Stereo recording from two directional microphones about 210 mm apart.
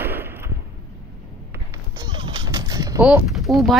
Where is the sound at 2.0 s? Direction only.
20° right (ahead or behind).